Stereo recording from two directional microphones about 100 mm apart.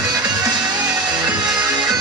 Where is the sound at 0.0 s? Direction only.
40° right (ahead or behind).